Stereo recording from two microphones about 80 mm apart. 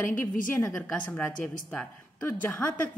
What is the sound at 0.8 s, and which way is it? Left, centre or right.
A woman's voice, left.